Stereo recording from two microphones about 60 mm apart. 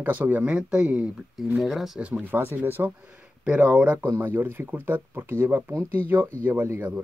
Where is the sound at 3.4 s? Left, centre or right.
Right.